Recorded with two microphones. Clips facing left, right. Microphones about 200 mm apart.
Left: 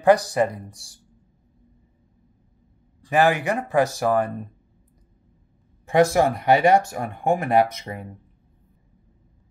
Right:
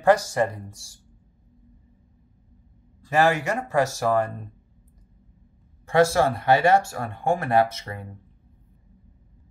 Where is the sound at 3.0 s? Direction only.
15° left (ahead or behind).